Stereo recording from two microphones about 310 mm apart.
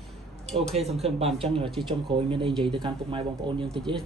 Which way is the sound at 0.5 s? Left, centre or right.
Centre.